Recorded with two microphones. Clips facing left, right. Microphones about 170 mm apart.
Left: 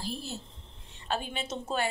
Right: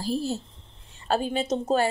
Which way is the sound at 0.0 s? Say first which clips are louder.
Right 10 dB; 40° right (ahead or behind).